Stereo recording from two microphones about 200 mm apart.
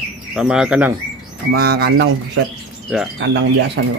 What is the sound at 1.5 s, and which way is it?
Speech, 50° right (ahead or behind).